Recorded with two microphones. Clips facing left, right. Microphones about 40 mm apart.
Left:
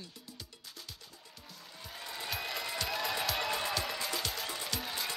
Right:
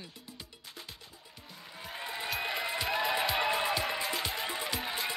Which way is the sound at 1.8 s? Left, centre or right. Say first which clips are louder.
Right 4 dB; right.